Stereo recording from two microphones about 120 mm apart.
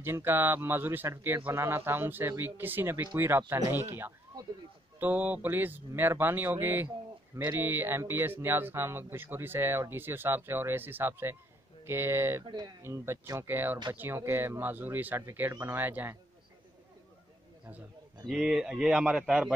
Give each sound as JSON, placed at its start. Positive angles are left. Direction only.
{"t": 0.0, "sound": "speech", "side_deg": -20}
{"t": 5.0, "sound": "speech", "side_deg": -15}
{"t": 12.4, "sound": "speech", "side_deg": -35}
{"t": 12.8, "sound": "speech", "side_deg": -20}
{"t": 18.2, "sound": "speech", "side_deg": -5}